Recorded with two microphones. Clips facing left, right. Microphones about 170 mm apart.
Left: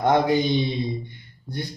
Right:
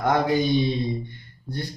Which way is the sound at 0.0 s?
20° left (ahead or behind).